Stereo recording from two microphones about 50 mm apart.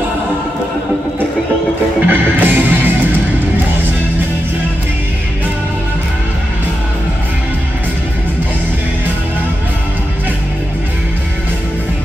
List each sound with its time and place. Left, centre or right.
2.0 s music: right